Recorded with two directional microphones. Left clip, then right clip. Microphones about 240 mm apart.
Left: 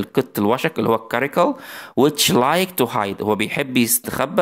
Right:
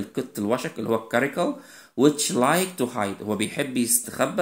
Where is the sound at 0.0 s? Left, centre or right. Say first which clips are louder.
Left 10 dB; left.